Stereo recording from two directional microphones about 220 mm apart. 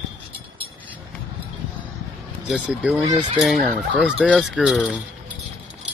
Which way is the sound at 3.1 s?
20° right (ahead or behind).